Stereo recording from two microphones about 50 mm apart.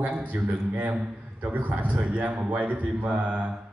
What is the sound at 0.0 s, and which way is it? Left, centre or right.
A woman's voice, right.